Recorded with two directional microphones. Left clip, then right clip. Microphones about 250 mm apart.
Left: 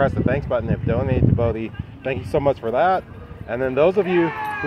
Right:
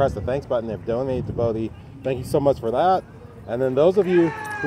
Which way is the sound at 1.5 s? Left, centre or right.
Right.